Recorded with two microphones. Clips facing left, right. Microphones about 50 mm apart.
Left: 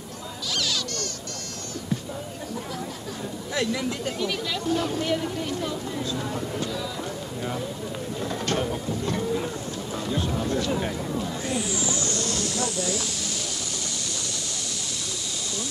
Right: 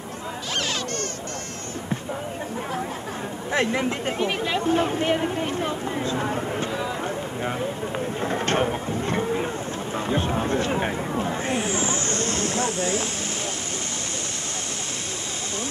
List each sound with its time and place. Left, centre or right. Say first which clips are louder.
0.6 s a sound: right 1 dB; right
3.5 s speech: right 4 dB; right
8.2 s speech: right 4 dB; right